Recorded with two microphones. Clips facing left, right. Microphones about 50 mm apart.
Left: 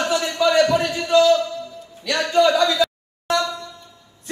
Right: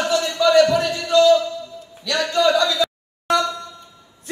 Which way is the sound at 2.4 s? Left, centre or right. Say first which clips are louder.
Right 2 dB; centre.